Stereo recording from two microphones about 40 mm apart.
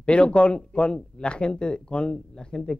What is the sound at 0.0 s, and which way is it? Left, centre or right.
A man's voice, left.